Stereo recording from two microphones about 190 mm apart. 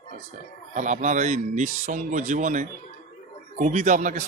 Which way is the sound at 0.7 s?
40° right (ahead or behind).